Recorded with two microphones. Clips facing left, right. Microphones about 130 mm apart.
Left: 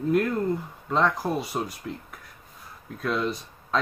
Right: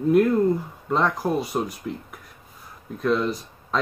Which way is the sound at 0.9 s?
5° right (ahead or behind).